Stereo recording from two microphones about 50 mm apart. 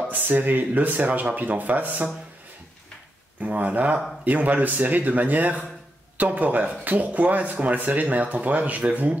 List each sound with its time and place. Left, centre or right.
0.3 s speech: right
3.4 s speech: right